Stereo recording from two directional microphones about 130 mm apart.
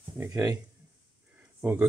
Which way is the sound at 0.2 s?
25° right (ahead or behind).